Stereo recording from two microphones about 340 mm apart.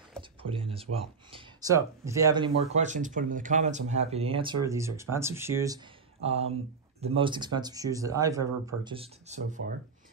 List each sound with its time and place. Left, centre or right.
0.4 s speech: centre